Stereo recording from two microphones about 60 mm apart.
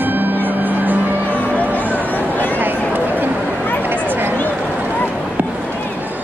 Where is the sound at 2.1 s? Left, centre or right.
Left.